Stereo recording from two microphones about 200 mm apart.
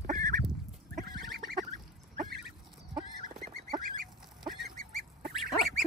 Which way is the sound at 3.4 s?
40° right (ahead or behind).